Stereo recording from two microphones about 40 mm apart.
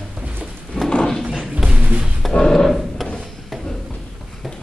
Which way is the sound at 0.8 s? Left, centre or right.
Left.